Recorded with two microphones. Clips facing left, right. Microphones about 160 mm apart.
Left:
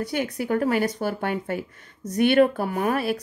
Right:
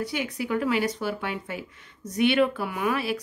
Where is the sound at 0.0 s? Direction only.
45° left (ahead or behind).